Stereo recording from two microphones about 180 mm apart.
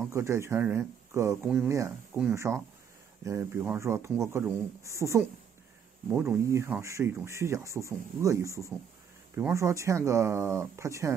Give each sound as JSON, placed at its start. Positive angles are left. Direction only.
{"t": 0.1, "sound": "speech", "side_deg": -15}